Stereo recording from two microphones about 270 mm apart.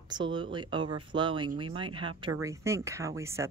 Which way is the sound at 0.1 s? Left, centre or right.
Centre.